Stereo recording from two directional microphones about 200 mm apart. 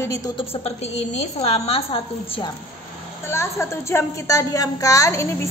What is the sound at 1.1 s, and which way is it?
Speech, 30° left (ahead or behind).